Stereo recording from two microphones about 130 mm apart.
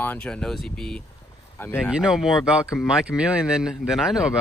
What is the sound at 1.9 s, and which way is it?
Speech, 5° right (ahead or behind).